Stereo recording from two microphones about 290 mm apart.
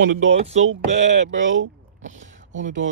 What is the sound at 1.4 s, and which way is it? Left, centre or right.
Speech, right.